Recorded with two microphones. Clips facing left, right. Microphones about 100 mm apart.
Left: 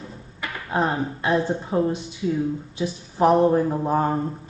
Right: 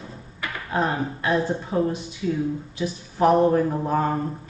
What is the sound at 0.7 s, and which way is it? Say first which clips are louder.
Speech: left 1 dB; 20° left (ahead or behind).